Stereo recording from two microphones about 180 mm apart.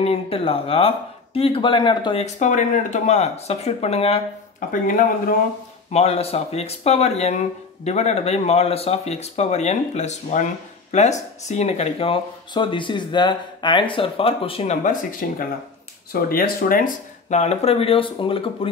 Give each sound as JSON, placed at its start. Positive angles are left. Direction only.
{"t": 0.0, "sound": "speech", "side_deg": 35}
{"t": 2.3, "sound": "speech", "side_deg": 45}
{"t": 4.6, "sound": "speech", "side_deg": 50}
{"t": 5.9, "sound": "speech", "side_deg": 35}